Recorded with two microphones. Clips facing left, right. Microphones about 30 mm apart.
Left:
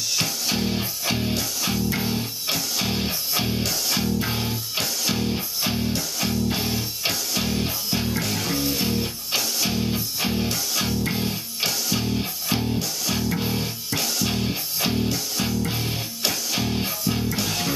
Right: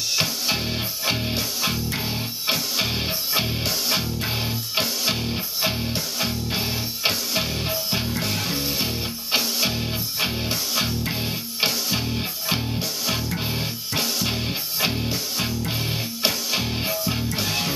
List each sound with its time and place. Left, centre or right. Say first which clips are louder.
0.1 s music: right 2 dB; right
15.4 s music: left 1 dB; centre